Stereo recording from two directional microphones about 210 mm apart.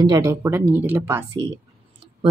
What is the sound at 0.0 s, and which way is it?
Speech, 15° right (ahead or behind).